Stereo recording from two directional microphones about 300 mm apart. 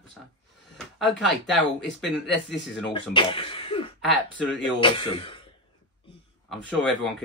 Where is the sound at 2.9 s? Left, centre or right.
Centre.